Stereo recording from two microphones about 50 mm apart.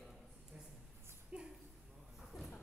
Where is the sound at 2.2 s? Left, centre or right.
Centre.